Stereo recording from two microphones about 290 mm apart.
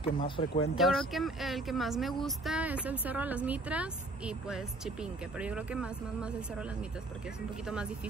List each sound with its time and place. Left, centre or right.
0.0 s speech: centre
0.7 s speech: centre
7.6 s speech: centre